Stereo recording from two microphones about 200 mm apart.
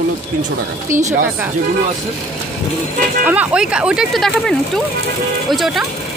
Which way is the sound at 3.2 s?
5° right (ahead or behind).